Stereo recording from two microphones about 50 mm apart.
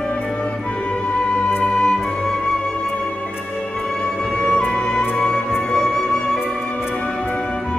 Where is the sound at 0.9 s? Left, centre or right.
Left.